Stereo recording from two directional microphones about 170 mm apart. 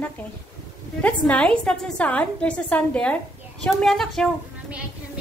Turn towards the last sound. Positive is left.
turn(degrees=-5)  # may be behind; listen again after turning